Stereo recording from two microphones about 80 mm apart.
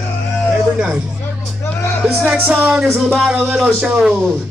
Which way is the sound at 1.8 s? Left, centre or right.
Left.